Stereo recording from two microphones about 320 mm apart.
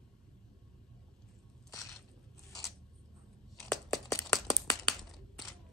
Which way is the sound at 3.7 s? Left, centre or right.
Centre.